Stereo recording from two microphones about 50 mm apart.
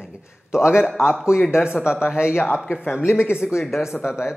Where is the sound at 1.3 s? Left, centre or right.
Left.